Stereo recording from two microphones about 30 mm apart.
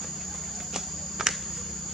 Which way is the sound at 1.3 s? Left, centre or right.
Centre.